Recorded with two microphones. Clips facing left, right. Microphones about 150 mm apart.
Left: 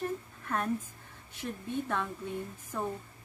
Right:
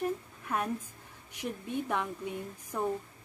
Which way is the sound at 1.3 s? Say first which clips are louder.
Even; 15° right (ahead or behind).